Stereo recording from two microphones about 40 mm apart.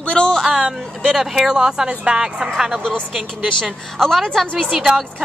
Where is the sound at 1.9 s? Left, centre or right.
Right.